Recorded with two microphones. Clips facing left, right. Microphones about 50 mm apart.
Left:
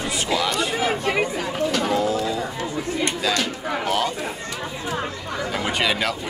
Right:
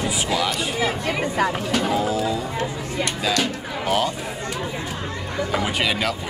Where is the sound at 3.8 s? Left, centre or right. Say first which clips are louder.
Right 2 dB; centre.